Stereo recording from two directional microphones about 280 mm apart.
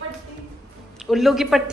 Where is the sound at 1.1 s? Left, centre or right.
Centre.